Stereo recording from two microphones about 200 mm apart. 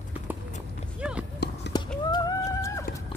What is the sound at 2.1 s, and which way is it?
Chicken, 20° left (ahead or behind).